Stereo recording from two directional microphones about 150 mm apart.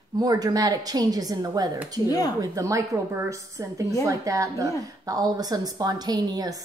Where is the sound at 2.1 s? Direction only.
25° left (ahead or behind).